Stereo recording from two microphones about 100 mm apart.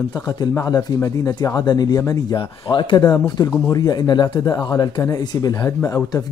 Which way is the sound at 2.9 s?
35° left (ahead or behind).